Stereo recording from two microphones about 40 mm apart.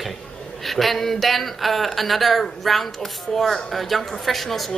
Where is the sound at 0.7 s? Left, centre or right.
Centre.